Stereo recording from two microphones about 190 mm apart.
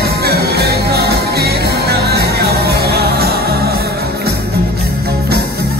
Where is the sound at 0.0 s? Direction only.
60° right (ahead or behind).